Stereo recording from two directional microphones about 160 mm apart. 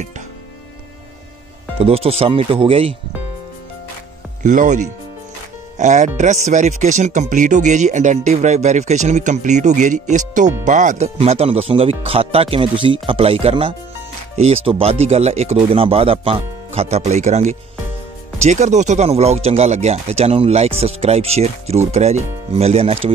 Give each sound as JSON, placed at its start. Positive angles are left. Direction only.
{"t": 1.8, "sound": "speech", "side_deg": -40}
{"t": 4.4, "sound": "speech", "side_deg": -50}